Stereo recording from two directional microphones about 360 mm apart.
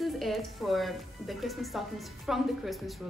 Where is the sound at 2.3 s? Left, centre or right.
Centre.